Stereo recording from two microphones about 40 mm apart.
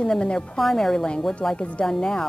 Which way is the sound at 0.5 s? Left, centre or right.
Centre.